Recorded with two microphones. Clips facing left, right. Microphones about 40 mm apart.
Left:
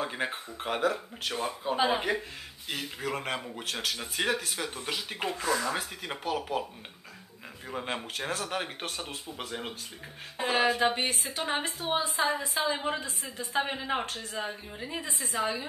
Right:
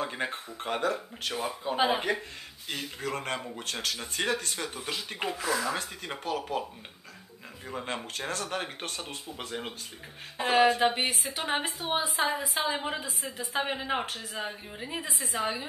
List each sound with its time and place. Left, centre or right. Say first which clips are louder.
0.0 s speech: even; centre
7.6 s speech: left 1 dB; centre
11.0 s a woman's voice: right 1 dB; centre